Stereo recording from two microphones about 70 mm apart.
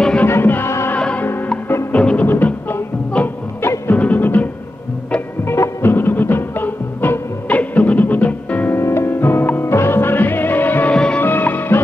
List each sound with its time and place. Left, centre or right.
0.3 s music: left
0.9 s music: centre
2.2 s music: left
3.2 s music: centre
5.5 s music: left
8.7 s music: left